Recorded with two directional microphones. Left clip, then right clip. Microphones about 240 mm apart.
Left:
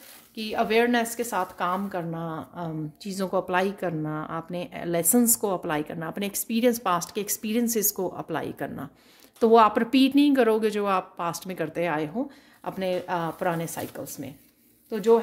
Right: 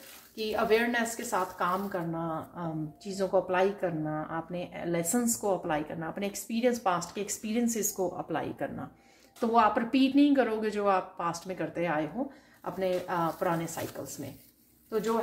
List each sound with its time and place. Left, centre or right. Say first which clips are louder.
0.4 s a woman's voice: left 4 dB; left